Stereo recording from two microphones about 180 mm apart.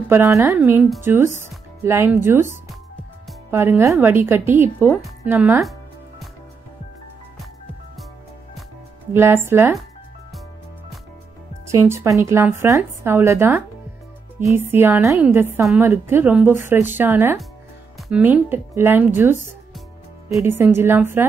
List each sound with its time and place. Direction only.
0.1 s a woman's voice: 15° right (ahead or behind)
3.5 s a woman's voice: 15° right (ahead or behind)
5.6 s music: centre (ahead or behind)
9.1 s a woman's voice: 15° right (ahead or behind)
11.6 s a woman's voice: 15° right (ahead or behind)
17.9 s music: centre (ahead or behind)
18.2 s a woman's voice: 10° right (ahead or behind)
20.4 s a woman's voice: 10° right (ahead or behind)